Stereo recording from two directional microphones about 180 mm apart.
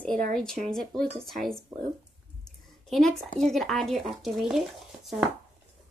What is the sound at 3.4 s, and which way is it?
Speech, centre (ahead or behind).